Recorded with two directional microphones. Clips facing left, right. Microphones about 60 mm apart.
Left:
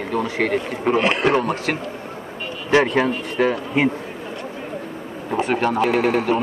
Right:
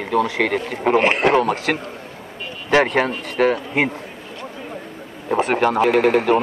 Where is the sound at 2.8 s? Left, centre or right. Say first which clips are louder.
Even; right.